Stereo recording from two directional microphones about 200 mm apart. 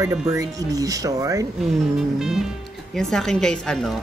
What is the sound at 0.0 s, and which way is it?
Speech, 15° right (ahead or behind).